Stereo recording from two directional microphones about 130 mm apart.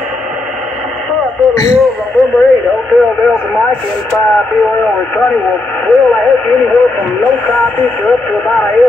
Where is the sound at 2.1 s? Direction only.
10° left (ahead or behind).